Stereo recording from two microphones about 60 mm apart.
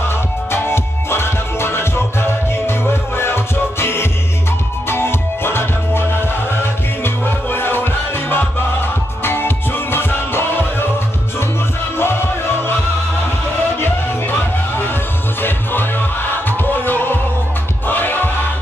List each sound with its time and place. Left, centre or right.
0.5 s music: left
7.2 s music: left
12.0 s music: left
15.4 s music: left